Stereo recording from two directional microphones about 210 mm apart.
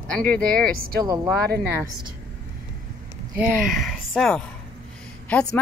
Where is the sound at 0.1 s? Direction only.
5° left (ahead or behind).